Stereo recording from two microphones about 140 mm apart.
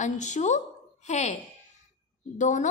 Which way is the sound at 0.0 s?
60° left (ahead or behind).